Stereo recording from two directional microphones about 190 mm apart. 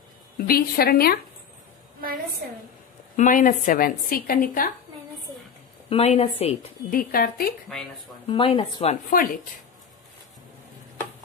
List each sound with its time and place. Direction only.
0.4 s a woman's voice: 50° left (ahead or behind)
3.2 s a woman's voice: 45° left (ahead or behind)
5.9 s a woman's voice: 35° left (ahead or behind)
6.9 s a woman's voice: 50° left (ahead or behind)
8.3 s speech: 30° left (ahead or behind)
9.1 s a woman's voice: 45° left (ahead or behind)